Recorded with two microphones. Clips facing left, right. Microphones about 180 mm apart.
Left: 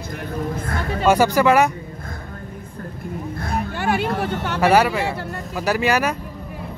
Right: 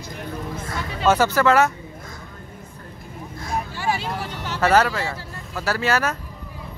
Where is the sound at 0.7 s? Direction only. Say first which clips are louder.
Left 5 dB; 55° left (ahead or behind).